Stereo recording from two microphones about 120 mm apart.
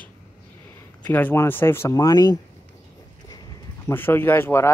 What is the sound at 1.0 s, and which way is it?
Speech, 15° left (ahead or behind).